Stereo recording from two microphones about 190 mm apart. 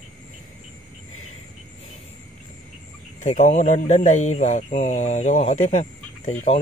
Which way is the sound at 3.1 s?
40° left (ahead or behind).